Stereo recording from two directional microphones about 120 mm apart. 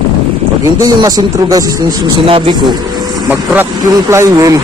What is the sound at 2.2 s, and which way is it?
Speech, 50° right (ahead or behind).